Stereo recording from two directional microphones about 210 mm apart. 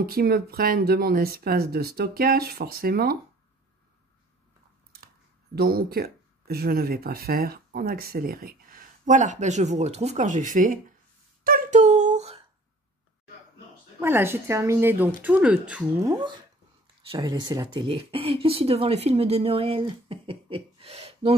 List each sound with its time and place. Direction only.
0.0 s speech: 45° right (ahead or behind)
5.0 s speech: 45° right (ahead or behind)
11.4 s a sound: 40° right (ahead or behind)
13.9 s a woman's voice: 10° right (ahead or behind); by 21.4 s 30° right (ahead or behind)